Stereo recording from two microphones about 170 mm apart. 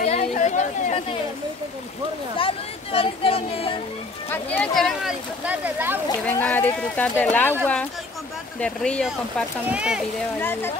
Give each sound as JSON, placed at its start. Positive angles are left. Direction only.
{"t": 0.0, "sound": "a sound", "side_deg": 40}
{"t": 2.3, "sound": "speech", "side_deg": 35}
{"t": 4.3, "sound": "speech", "side_deg": 10}
{"t": 6.2, "sound": "speech", "side_deg": 10}
{"t": 9.7, "sound": "speech", "side_deg": -5}
{"t": 10.4, "sound": "speech", "side_deg": 10}